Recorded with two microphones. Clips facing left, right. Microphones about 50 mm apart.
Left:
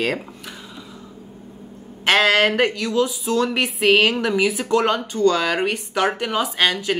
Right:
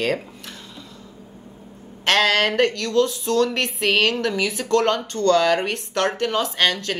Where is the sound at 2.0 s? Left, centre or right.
Centre.